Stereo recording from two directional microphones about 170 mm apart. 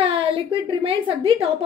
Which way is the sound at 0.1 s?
30° right (ahead or behind).